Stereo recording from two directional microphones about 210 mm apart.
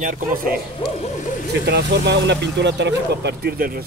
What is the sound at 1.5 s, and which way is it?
Speech, 55° right (ahead or behind).